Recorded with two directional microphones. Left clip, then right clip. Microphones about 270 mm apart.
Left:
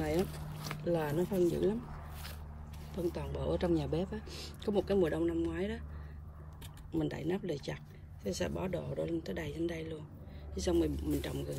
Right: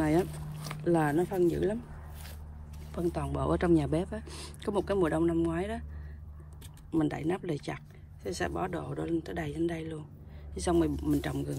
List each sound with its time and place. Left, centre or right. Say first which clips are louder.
0.8 s speech: right 6 dB; centre
2.9 s speech: right 5 dB; centre
3.5 s speech: right 6 dB; right
6.9 s speech: right 5 dB; centre